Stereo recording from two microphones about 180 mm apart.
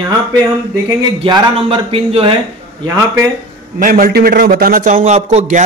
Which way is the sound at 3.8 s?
50° right (ahead or behind).